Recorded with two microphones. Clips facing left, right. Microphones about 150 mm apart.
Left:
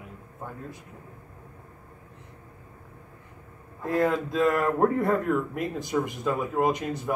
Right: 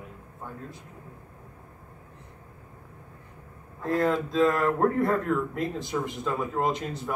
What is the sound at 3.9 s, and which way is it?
Speech, 15° left (ahead or behind).